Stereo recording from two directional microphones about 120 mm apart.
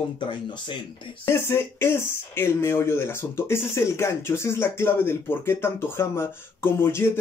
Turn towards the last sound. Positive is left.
turn(degrees=20)  # may be behind; listen again after turning